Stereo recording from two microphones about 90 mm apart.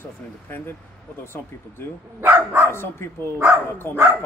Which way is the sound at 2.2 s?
25° right (ahead or behind).